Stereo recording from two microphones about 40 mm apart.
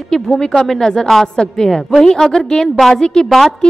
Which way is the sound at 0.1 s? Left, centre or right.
Centre.